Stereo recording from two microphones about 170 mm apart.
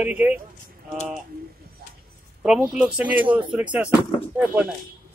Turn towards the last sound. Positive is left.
turn(degrees=-10)  # may be behind; listen again after turning